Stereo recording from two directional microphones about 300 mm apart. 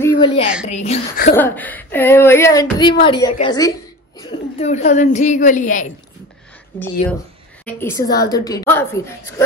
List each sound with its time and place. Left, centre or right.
0.0 s a sound: centre
0.7 s a woman's voice: left
1.3 s a woman's voice: centre; by 5.9 s left
7.6 s speech: centre